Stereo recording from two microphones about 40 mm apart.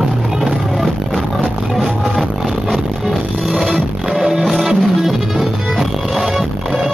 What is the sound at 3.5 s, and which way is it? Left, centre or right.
Music, centre.